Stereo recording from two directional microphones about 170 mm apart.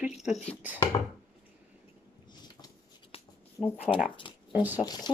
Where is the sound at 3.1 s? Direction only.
35° left (ahead or behind).